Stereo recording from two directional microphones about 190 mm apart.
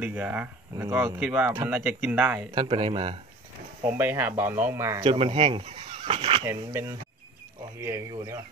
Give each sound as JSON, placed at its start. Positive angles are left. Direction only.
{"t": 0.0, "sound": "speech", "side_deg": -10}
{"t": 2.5, "sound": "speech", "side_deg": -25}
{"t": 3.9, "sound": "speech", "side_deg": -10}
{"t": 5.0, "sound": "speech", "side_deg": -30}
{"t": 6.4, "sound": "speech", "side_deg": -15}